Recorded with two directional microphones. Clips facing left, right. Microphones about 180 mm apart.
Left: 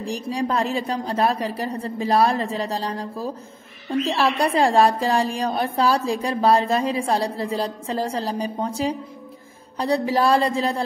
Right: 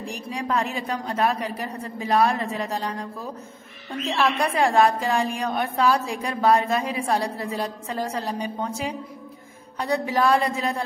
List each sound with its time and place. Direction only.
0.0 s a woman's voice: 35° left (ahead or behind)